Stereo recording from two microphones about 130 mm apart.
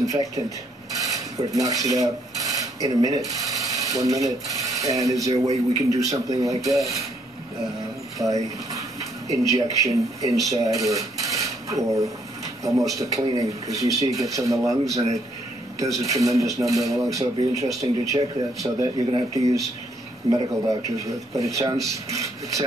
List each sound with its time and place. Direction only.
0.0 s speech: 25° right (ahead or behind)
0.9 s filing: 25° right (ahead or behind)
3.3 s speech: 25° right (ahead or behind)
8.2 s speech: 25° right (ahead or behind)
10.2 s speech: 25° right (ahead or behind)